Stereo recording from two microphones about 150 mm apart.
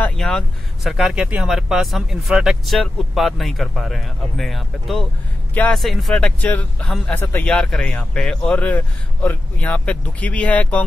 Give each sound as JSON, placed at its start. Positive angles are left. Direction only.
{"t": 0.0, "sound": "speech", "side_deg": 5}